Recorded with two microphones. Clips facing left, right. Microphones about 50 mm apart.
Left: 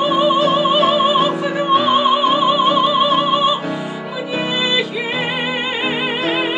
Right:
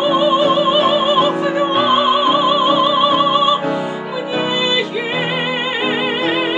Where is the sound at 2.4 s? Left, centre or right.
Centre.